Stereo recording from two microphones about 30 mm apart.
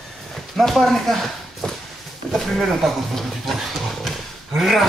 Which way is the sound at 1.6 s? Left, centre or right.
Left.